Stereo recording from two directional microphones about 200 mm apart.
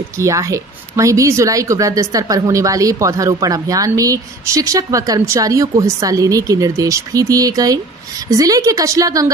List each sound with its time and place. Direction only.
0.2 s a woman's voice: 15° right (ahead or behind)